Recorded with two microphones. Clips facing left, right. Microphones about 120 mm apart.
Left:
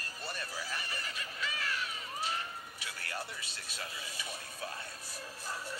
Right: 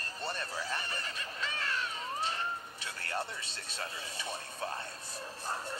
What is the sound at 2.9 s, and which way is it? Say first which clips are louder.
Music: right 5 dB; 35° right (ahead or behind).